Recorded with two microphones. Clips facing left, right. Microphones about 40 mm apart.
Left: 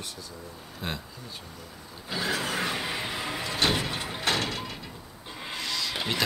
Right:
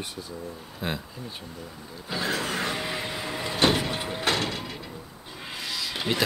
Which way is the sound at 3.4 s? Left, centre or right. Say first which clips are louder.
Right 5 dB; centre.